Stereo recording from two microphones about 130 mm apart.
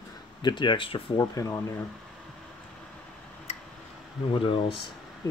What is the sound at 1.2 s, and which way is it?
Speech, 25° left (ahead or behind).